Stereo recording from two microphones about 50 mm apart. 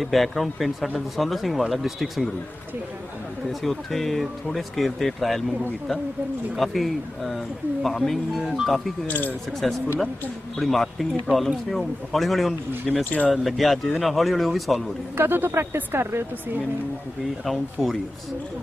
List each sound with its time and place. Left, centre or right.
0.0 s speech: centre
3.6 s speech: centre
9.0 s speech: left
9.5 s speech: centre
15.1 s speech: right
17.5 s speech: centre